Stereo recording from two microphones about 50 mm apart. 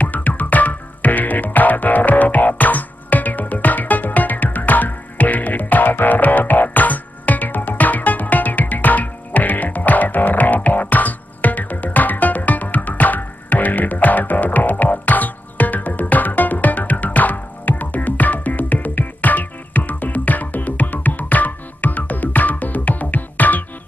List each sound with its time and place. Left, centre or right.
0.0 s music: left